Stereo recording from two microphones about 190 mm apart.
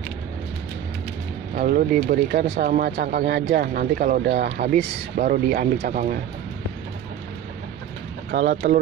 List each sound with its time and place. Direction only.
1.5 s speech: 45° right (ahead or behind)
8.6 s speech: 50° right (ahead or behind)